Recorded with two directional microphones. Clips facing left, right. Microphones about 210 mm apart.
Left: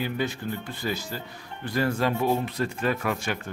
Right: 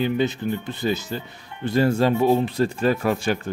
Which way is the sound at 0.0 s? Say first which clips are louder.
Right 7 dB; 20° right (ahead or behind).